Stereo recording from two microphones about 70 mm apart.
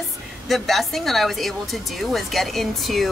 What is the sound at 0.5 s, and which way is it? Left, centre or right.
Speech, centre.